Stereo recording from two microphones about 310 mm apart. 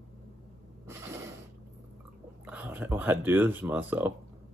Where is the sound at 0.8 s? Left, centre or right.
Centre.